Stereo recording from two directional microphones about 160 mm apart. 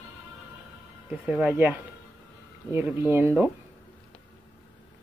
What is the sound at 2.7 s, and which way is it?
Speech, 15° right (ahead or behind).